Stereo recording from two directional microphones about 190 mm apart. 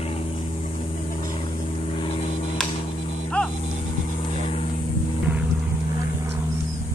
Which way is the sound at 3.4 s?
5° left (ahead or behind).